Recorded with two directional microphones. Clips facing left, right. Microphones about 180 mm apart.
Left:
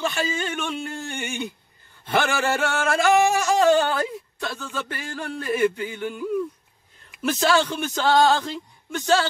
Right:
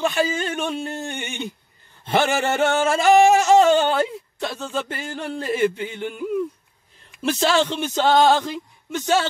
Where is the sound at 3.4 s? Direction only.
25° right (ahead or behind).